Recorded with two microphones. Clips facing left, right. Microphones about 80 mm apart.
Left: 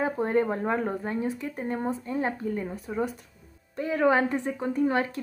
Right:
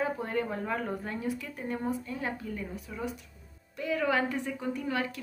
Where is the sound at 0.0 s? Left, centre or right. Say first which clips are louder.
Left 6 dB; left.